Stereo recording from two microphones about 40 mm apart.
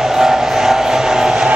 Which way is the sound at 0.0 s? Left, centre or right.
Centre.